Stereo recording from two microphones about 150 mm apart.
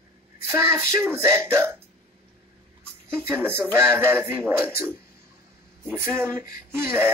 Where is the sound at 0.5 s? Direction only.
15° right (ahead or behind).